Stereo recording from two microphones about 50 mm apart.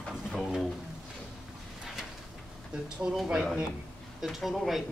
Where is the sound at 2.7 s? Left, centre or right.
Centre.